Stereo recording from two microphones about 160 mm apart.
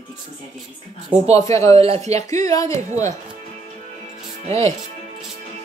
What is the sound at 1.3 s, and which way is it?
Speech, 20° left (ahead or behind).